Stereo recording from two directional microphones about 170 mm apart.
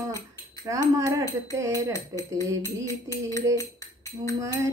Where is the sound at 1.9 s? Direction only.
20° left (ahead or behind).